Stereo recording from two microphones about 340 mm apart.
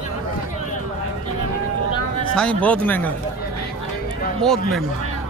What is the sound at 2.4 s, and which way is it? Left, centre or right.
Speech, centre.